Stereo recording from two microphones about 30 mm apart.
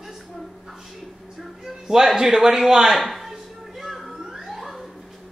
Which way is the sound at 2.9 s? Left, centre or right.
Centre.